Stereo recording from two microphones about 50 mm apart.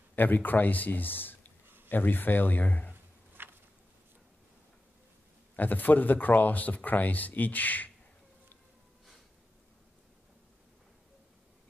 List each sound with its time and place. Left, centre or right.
0.1 s speech: left
2.9 s a sound: right
5.6 s speech: left